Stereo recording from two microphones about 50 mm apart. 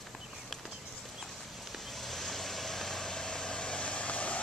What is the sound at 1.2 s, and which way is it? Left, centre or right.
Vehicle, centre.